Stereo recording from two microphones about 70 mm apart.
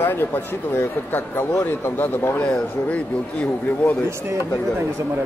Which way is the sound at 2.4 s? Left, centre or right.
Centre.